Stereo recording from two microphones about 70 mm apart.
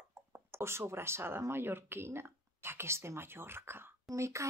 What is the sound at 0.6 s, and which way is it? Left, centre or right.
A woman's voice, right.